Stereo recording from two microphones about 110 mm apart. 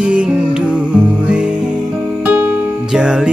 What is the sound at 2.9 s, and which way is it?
Mantra, 5° right (ahead or behind).